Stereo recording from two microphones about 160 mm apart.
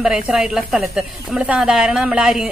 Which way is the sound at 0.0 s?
5° right (ahead or behind).